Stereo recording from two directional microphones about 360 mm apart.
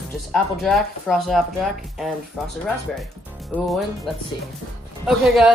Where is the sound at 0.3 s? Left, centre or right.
Centre.